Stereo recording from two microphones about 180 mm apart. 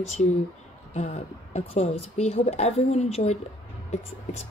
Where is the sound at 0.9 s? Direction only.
35° left (ahead or behind).